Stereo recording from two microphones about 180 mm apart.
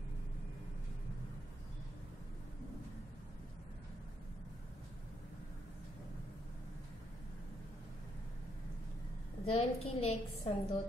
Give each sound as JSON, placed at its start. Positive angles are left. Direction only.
{"t": 9.5, "sound": "a woman's voice", "side_deg": 35}